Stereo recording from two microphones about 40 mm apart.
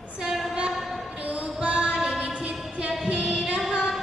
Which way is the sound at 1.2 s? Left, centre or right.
Right.